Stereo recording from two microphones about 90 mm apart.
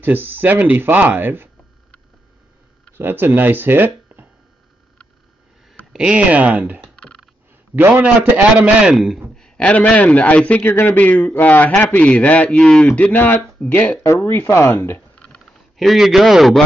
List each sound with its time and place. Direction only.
0.0 s speech: 20° right (ahead or behind)
3.0 s speech: 25° right (ahead or behind)
5.9 s a man's voice: 10° right (ahead or behind)
8.9 s speech: 5° right (ahead or behind)
9.3 s a man's voice: 10° left (ahead or behind)
10.7 s a man's voice: 25° left (ahead or behind)
15.1 s a sound: 10° left (ahead or behind)
15.8 s speech: centre (ahead or behind)